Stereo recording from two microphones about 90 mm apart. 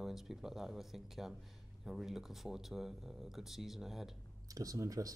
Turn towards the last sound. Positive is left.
turn(degrees=-40)  # may be behind; listen again after turning